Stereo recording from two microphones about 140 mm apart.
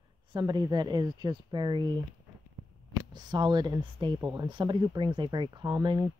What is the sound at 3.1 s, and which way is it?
Speech, 30° right (ahead or behind).